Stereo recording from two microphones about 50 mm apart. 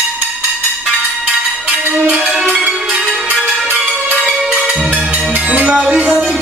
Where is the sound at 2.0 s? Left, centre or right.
Right.